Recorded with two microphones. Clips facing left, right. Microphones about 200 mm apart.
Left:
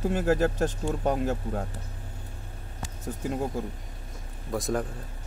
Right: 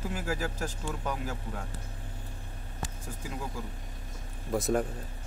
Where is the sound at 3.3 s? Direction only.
45° left (ahead or behind).